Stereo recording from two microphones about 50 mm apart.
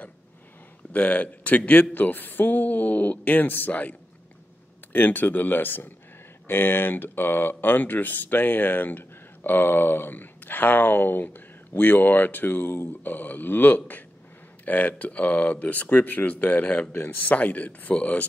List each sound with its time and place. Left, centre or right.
0.9 s speech: left
4.9 s speech: left
13.0 s speech: left